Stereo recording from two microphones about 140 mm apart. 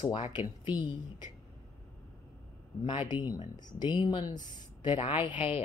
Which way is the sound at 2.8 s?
35° left (ahead or behind).